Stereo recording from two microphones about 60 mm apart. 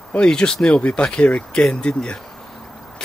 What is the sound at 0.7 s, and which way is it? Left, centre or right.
Speech, left.